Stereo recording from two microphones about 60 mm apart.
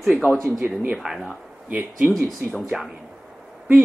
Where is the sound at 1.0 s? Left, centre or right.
Centre.